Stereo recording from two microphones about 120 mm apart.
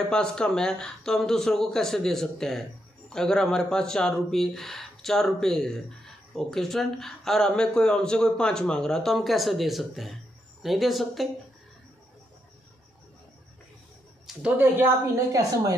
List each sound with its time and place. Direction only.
0.1 s speech: 5° left (ahead or behind)
14.3 s a sound: centre (ahead or behind)
15.1 s a woman's voice: 25° right (ahead or behind)